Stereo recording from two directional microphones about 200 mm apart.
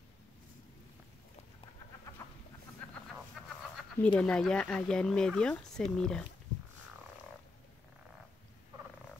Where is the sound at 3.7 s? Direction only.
5° left (ahead or behind).